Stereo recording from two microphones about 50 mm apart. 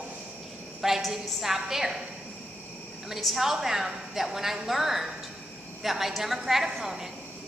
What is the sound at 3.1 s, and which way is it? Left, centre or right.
A woman's voice, centre.